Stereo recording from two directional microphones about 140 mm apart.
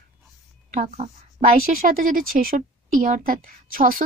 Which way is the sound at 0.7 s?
55° right (ahead or behind).